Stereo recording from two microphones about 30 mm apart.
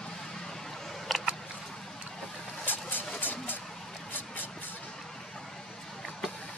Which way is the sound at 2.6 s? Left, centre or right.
Left.